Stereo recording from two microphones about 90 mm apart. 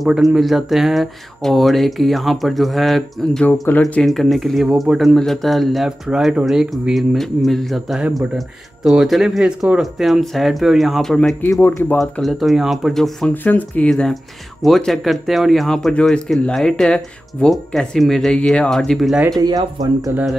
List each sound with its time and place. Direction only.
0.0 s speech: 5° right (ahead or behind)
3.7 s speech: 25° left (ahead or behind)
4.0 s speech: centre (ahead or behind)
11.6 s speech: 25° left (ahead or behind)
12.0 s speech: centre (ahead or behind)
13.3 s speech: 20° left (ahead or behind)
13.8 s speech: 5° left (ahead or behind)
19.4 s speech: 45° right (ahead or behind)